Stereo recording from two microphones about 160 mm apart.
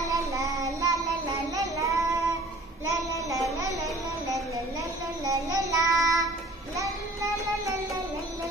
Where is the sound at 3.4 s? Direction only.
20° right (ahead or behind).